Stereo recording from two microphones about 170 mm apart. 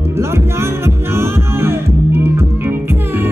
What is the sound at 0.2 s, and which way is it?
Music, 15° right (ahead or behind).